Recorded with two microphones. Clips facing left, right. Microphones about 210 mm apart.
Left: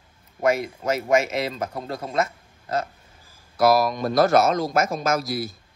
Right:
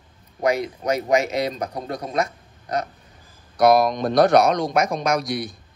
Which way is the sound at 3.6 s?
5° left (ahead or behind).